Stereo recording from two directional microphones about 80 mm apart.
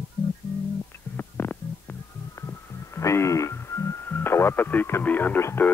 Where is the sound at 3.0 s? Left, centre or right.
Left.